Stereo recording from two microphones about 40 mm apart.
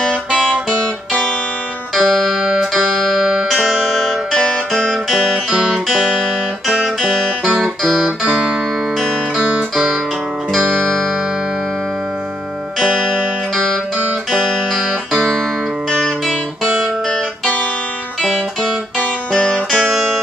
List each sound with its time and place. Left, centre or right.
0.7 s music: left
3.5 s music: centre
7.0 s music: centre
14.3 s music: centre
18.9 s music: left